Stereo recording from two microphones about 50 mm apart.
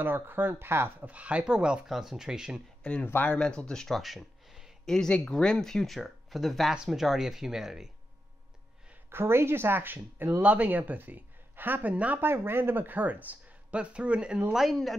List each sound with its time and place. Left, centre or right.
0.0 s speech: right
1.0 s speech: right
1.9 s speech: centre
2.8 s speech: left
4.0 s a sound: centre
4.8 s speech: centre
9.1 s speech: right
10.4 s speech: right
11.9 s speech: right
12.2 s speech: right; by 14.4 s centre
14.5 s speech: centre